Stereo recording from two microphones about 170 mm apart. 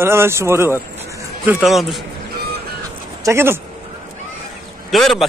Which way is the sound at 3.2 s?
15° right (ahead or behind).